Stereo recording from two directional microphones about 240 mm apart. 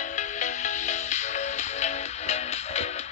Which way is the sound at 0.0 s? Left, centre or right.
Left.